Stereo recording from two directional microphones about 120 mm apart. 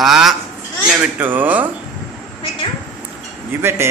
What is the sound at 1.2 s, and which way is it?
Speech, 15° right (ahead or behind).